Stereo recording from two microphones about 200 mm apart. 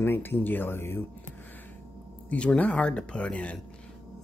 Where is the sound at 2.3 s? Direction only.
5° left (ahead or behind).